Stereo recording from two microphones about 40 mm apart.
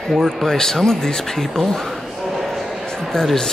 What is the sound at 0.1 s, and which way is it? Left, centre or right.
Speech, centre.